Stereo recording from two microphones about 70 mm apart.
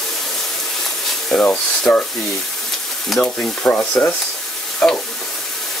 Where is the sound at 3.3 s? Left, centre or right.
Left.